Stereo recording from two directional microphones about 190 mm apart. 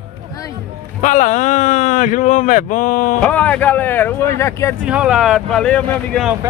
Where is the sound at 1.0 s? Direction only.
40° left (ahead or behind).